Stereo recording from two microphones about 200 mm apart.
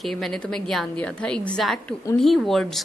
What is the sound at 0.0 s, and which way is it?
A woman's voice, centre (ahead or behind).